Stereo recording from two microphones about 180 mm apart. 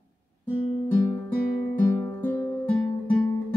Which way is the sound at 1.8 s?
15° left (ahead or behind).